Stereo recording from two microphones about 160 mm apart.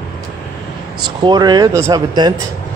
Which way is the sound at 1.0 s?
30° right (ahead or behind).